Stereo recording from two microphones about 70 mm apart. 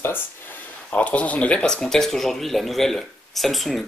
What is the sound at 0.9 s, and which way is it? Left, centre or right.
Speech, centre.